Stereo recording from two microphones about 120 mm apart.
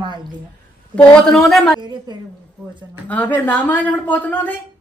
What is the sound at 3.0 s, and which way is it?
Speech, 15° left (ahead or behind).